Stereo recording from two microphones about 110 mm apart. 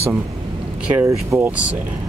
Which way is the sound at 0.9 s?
25° right (ahead or behind).